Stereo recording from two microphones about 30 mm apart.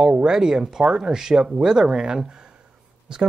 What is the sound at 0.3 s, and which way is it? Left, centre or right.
Speech, centre.